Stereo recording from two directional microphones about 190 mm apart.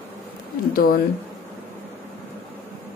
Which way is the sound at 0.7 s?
50° left (ahead or behind).